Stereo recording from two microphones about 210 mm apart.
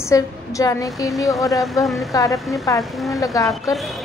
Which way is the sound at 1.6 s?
Centre (ahead or behind).